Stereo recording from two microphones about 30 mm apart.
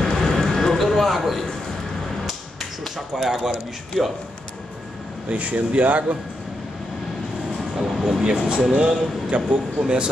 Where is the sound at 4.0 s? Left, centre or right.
Centre.